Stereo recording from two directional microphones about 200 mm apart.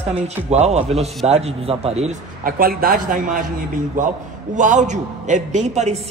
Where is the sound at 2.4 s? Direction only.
45° right (ahead or behind).